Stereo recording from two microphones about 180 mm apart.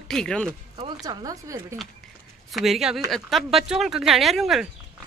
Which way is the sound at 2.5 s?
Centre (ahead or behind).